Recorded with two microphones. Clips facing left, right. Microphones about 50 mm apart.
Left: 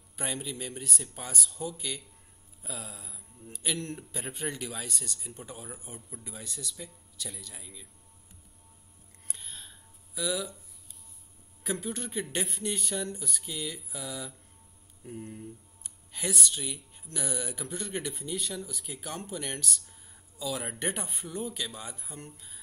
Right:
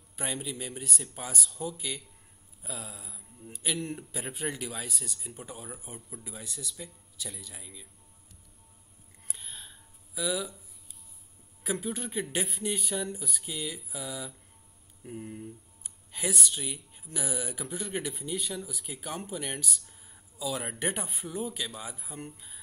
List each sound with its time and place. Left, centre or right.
0.1 s speech: centre
9.3 s a sound: centre
11.6 s speech: centre